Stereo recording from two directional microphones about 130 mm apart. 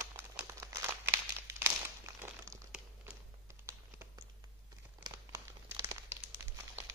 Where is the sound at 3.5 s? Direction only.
20° right (ahead or behind).